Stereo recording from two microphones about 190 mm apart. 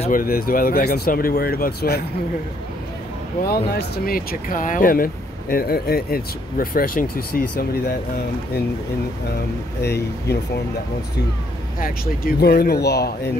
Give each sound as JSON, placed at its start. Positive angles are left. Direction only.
{"t": 0.1, "sound": "speech", "side_deg": 50}
{"t": 3.4, "sound": "speech", "side_deg": 55}
{"t": 9.8, "sound": "speech", "side_deg": 60}
{"t": 11.8, "sound": "speech", "side_deg": 50}